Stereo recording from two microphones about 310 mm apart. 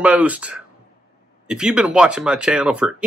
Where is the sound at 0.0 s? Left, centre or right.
Centre.